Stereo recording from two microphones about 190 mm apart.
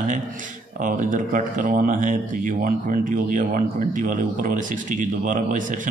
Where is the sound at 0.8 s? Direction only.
45° right (ahead or behind).